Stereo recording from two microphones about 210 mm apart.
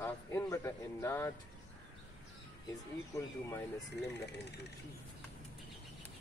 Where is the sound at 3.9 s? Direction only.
55° left (ahead or behind).